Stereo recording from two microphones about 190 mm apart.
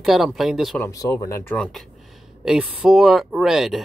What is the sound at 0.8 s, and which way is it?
Speech, 15° left (ahead or behind).